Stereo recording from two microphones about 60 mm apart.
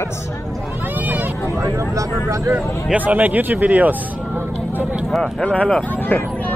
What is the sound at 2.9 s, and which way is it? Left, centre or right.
Speech, right.